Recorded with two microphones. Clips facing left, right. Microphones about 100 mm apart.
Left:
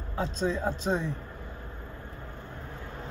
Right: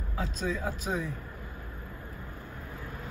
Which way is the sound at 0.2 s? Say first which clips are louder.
Left 4 dB; 30° left (ahead or behind).